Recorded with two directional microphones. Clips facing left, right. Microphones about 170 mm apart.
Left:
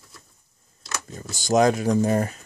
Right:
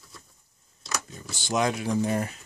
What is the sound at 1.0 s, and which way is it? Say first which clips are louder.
Speech: left 8 dB; 45° left (ahead or behind).